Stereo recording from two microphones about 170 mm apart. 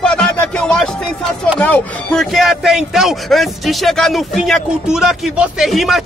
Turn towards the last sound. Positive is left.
turn(degrees=0)  # may be behind; listen again after turning